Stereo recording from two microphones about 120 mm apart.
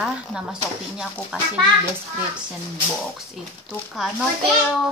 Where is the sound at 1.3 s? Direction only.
5° right (ahead or behind).